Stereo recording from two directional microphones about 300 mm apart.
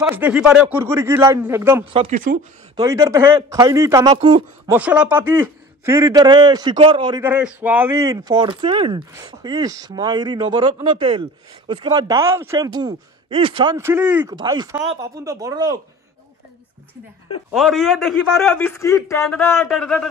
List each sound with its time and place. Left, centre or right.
0.0 s speech: centre
2.0 s speech: right
2.7 s speech: centre
17.5 s a man's voice: centre